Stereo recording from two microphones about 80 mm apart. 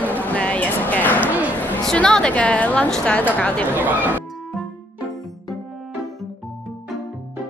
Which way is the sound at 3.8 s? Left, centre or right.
Right.